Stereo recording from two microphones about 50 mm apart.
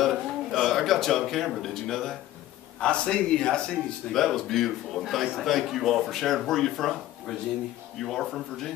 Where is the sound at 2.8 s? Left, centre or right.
Centre.